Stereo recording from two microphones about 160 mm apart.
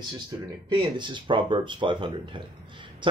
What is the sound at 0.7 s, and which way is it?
Speech, 30° right (ahead or behind).